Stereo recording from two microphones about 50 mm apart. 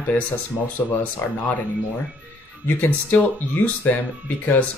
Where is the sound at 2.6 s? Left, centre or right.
Left.